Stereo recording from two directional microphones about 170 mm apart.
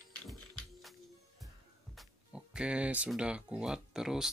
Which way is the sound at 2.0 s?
5° right (ahead or behind).